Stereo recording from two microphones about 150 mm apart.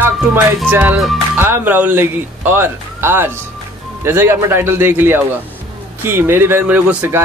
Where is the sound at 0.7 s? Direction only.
10° right (ahead or behind).